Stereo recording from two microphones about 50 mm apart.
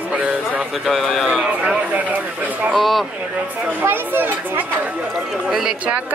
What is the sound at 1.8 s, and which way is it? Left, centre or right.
Speech, right.